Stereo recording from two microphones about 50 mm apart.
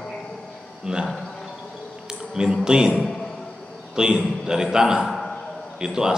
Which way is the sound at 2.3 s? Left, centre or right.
Centre.